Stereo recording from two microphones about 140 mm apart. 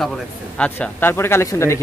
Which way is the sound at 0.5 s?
10° left (ahead or behind).